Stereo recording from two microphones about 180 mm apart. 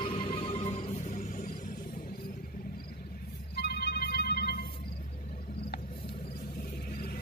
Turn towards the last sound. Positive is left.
turn(degrees=55)  # may be behind; listen again after turning